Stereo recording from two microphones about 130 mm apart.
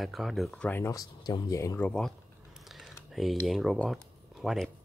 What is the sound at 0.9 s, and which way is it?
Speech, 30° left (ahead or behind).